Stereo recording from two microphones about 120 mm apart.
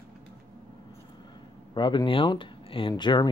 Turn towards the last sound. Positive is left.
turn(degrees=40)  # may be behind; listen again after turning